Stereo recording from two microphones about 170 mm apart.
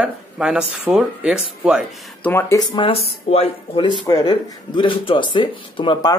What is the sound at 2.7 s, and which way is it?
Speech, 35° left (ahead or behind).